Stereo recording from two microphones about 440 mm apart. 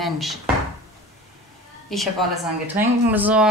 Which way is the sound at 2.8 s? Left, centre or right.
Centre.